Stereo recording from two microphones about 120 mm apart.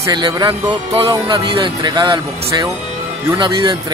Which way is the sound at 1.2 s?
45° right (ahead or behind).